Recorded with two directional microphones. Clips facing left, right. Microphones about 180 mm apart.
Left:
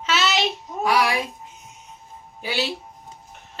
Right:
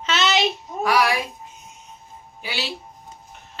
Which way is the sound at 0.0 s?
5° left (ahead or behind).